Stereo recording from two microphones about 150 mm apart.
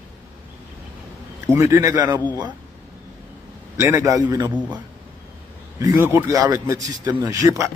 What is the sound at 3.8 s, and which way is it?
Speech, 20° right (ahead or behind).